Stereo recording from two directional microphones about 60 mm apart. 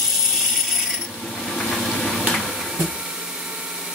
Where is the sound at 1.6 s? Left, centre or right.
Centre.